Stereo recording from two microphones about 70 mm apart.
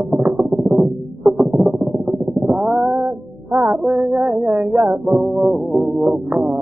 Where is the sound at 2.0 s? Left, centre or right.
Centre.